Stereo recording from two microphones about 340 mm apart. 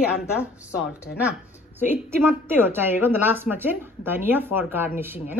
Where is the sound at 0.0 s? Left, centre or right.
Centre.